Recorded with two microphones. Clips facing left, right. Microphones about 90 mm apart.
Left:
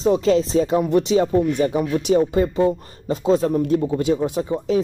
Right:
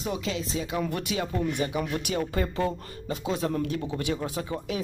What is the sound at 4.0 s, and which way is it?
Speech, 25° left (ahead or behind).